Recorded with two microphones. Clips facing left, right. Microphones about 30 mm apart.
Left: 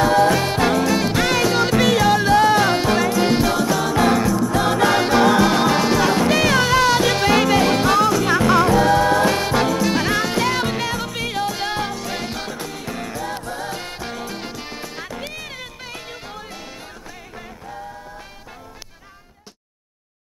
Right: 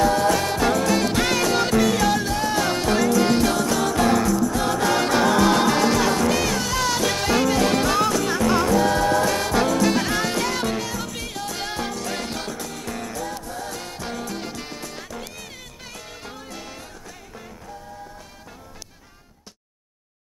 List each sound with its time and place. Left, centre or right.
0.0 s music: left
0.8 s music: centre
2.2 s music: left; by 3.9 s centre
3.9 s music: left
6.8 s music: left
8.3 s music: left
9.8 s music: centre
12.6 s music: left
15.0 s music: left; by 16.7 s centre